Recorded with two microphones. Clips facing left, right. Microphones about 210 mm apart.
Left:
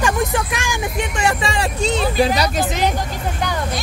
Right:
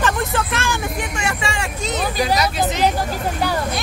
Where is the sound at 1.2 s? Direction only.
35° left (ahead or behind).